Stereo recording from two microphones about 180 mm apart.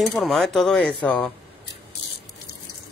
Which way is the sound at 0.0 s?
Centre (ahead or behind).